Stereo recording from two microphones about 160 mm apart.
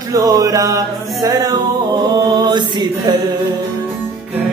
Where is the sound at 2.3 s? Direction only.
25° right (ahead or behind).